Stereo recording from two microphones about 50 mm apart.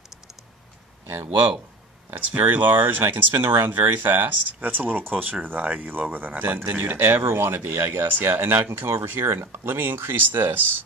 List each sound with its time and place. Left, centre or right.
2.1 s speech: right